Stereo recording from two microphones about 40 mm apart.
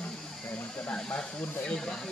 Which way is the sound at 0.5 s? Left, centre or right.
Left.